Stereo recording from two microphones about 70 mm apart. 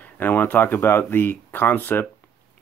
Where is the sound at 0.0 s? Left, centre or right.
Left.